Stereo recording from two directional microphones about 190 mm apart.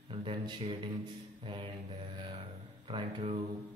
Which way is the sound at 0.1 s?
30° right (ahead or behind).